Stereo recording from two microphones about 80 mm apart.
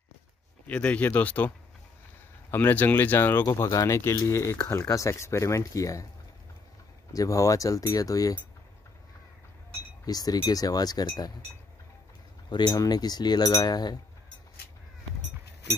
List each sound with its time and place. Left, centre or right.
0.7 s speech: centre
2.5 s speech: left
3.7 s speech: left
7.1 s speech: left
10.0 s speech: left
12.4 s cutlery: left